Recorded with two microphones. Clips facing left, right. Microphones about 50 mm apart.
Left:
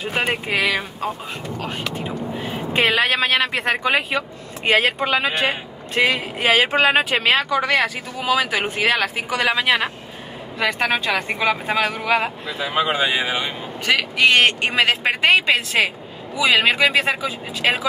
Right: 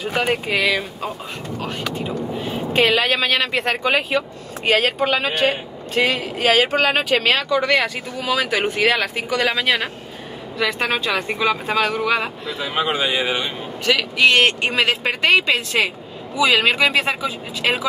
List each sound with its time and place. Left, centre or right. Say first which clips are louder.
0.0 s speech: right 2 dB; left
2.8 s speech: right 1 dB; centre
3.2 s speech: left 1 dB; left
3.5 s speech: even; centre
5.5 s speech: right 2 dB; left; by 12.3 s centre
12.5 s speech: left 1 dB; left; by 17.8 s centre